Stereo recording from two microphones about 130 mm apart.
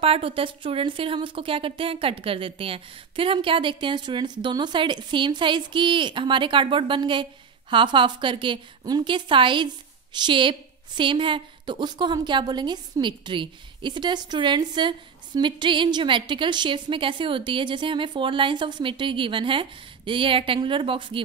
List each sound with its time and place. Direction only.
0.0 s a woman's voice: 45° right (ahead or behind)